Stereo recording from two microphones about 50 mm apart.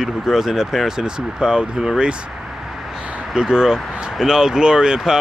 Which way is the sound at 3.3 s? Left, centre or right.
Centre.